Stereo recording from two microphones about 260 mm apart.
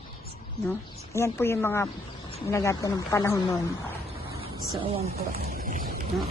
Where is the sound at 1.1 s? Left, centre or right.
Centre.